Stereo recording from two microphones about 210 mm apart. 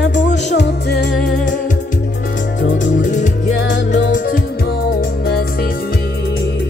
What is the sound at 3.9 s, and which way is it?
Music, 40° left (ahead or behind).